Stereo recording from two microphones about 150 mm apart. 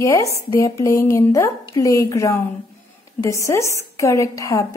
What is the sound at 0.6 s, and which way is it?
A woman's voice, 20° left (ahead or behind).